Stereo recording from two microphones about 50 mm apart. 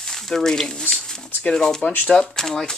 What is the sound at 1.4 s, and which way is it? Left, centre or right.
Speech, centre.